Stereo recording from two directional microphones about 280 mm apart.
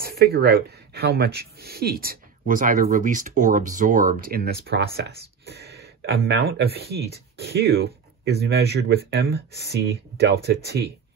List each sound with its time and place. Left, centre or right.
0.2 s speech: right